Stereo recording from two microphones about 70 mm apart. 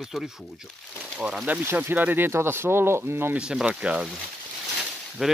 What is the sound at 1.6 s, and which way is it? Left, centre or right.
Speech, right.